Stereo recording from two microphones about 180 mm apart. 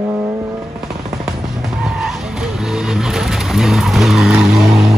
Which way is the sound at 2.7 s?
5° right (ahead or behind).